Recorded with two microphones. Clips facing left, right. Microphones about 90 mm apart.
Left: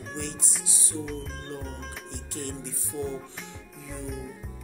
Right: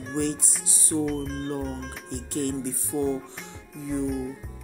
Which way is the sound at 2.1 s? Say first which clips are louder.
Right 10 dB; 50° right (ahead or behind).